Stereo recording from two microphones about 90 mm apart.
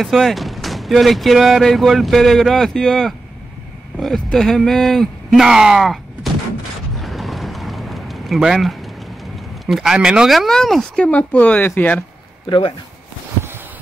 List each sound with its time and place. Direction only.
0.0 s speech: centre (ahead or behind)
7.0 s a sound: centre (ahead or behind)
9.7 s speech: 5° right (ahead or behind)
11.1 s speech: 15° left (ahead or behind)
12.4 s speech: 70° left (ahead or behind)